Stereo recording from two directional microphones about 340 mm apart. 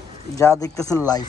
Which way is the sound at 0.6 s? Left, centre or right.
Centre.